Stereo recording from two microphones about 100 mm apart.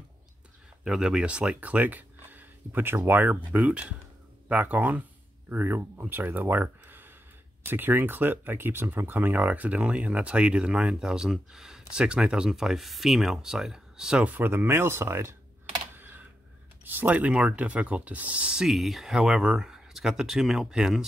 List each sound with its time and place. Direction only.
0.8 s speech: 5° right (ahead or behind)
14.3 s speech: 20° right (ahead or behind)
16.8 s speech: 15° right (ahead or behind)